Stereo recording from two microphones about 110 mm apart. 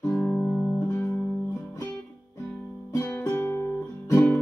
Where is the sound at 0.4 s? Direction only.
Centre (ahead or behind).